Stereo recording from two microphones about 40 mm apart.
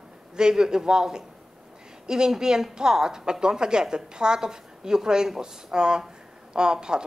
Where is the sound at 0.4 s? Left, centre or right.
Centre.